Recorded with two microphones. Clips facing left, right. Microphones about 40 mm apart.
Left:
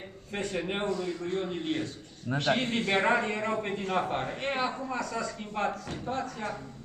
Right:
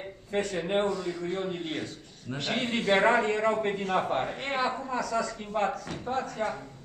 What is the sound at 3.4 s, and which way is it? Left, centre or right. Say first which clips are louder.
Speech: right 5 dB; centre.